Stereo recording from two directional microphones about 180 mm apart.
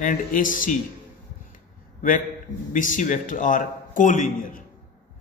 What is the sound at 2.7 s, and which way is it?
Speech, 45° left (ahead or behind).